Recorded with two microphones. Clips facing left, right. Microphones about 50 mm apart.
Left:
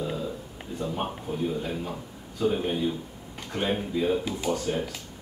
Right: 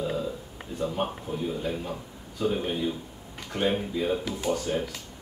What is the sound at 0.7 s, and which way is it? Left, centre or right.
A man's voice, centre.